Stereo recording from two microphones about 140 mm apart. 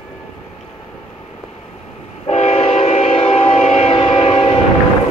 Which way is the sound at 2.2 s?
50° left (ahead or behind).